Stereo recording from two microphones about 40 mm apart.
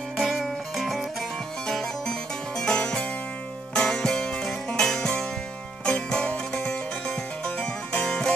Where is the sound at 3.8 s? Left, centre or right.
Centre.